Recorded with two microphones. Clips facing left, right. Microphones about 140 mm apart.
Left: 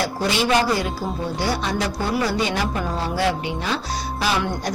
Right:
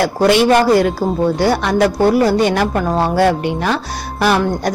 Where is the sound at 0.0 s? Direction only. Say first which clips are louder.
Right 10 dB; 60° right (ahead or behind).